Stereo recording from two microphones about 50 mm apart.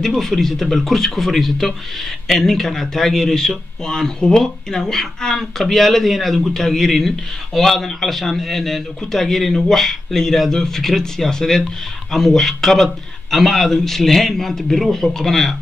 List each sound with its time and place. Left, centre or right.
0.0 s a man's voice: centre